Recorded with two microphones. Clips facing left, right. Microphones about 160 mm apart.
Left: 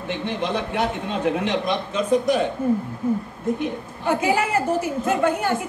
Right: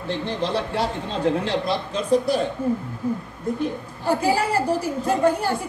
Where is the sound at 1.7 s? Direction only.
35° right (ahead or behind).